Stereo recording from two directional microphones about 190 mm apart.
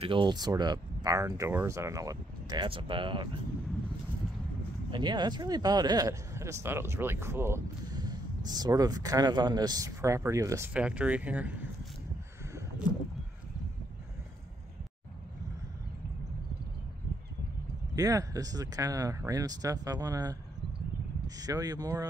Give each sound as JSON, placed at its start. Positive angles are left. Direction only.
{"t": 0.0, "sound": "speech", "side_deg": -25}
{"t": 4.9, "sound": "speech", "side_deg": -25}
{"t": 17.9, "sound": "speech", "side_deg": -20}
{"t": 21.4, "sound": "speech", "side_deg": -20}